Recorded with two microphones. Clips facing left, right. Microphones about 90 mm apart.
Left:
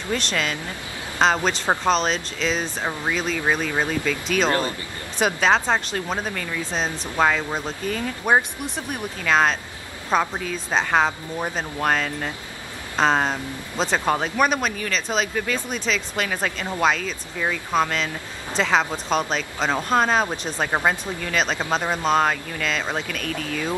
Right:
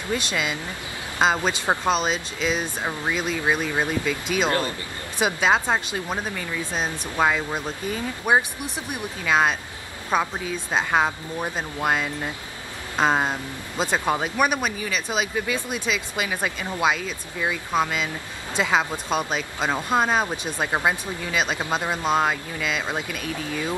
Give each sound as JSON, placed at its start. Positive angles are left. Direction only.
{"t": 0.1, "sound": "speech", "side_deg": -10}
{"t": 4.5, "sound": "speech", "side_deg": 25}
{"t": 5.2, "sound": "speech", "side_deg": -10}